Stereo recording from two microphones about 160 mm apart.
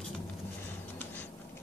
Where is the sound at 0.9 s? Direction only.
10° left (ahead or behind).